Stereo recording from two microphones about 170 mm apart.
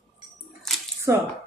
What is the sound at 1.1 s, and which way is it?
Speech, 15° right (ahead or behind).